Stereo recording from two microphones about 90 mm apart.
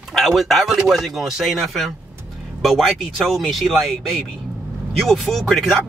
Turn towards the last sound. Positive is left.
turn(degrees=0)  # may be behind; listen again after turning